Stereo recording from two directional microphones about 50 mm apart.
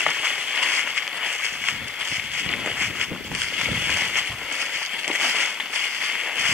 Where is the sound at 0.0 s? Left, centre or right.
Centre.